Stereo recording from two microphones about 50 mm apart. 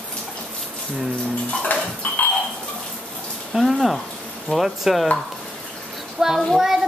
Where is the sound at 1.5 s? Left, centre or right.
Left.